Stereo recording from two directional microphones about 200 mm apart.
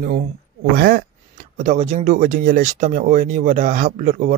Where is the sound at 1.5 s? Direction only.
40° right (ahead or behind).